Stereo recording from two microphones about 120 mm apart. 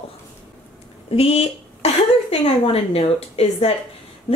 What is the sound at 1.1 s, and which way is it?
A woman's voice, 55° left (ahead or behind).